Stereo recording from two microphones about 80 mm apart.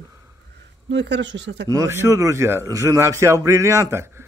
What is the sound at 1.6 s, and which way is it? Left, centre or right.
Speech, right.